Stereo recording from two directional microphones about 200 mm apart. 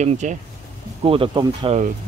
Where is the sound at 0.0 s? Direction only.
35° right (ahead or behind).